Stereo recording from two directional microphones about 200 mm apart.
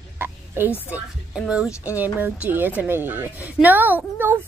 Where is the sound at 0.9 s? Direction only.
5° right (ahead or behind).